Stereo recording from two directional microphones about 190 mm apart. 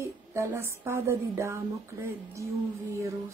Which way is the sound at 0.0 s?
15° right (ahead or behind).